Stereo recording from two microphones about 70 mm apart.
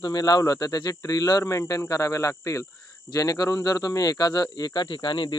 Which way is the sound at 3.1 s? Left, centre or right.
Left.